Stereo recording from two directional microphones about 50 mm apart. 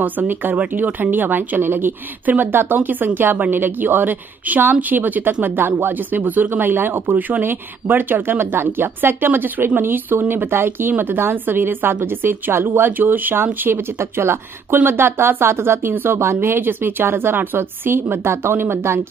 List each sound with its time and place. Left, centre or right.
0.0 s speech: right
14.7 s speech: right
15.9 s speech: right
16.2 s speech: right